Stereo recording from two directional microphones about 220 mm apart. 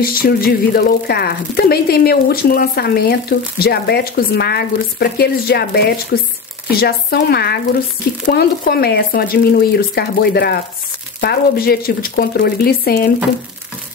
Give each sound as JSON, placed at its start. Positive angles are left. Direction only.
{"t": 0.0, "sound": "speech", "side_deg": 40}